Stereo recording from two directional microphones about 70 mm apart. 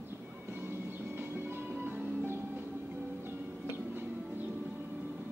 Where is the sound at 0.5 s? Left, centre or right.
Right.